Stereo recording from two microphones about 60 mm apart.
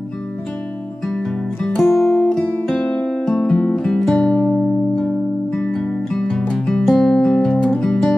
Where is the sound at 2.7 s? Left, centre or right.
Centre.